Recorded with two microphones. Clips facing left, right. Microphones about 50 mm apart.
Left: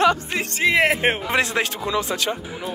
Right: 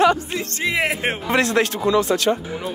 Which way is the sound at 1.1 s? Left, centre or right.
Centre.